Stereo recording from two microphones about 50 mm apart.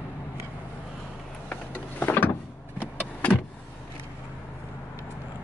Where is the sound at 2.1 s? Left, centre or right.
Left.